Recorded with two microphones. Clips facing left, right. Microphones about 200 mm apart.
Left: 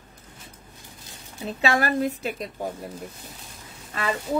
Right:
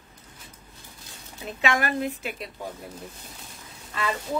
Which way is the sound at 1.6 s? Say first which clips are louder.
Left 3 dB; 35° left (ahead or behind).